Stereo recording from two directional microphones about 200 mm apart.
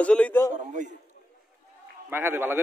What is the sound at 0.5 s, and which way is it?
Speech, 40° right (ahead or behind).